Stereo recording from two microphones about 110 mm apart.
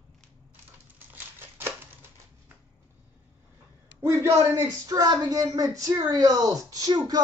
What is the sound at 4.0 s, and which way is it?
A man's voice, 25° right (ahead or behind).